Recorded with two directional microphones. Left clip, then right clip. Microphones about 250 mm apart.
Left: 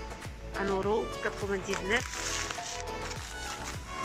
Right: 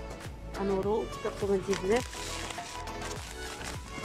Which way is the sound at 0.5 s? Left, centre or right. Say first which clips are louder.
Even; centre.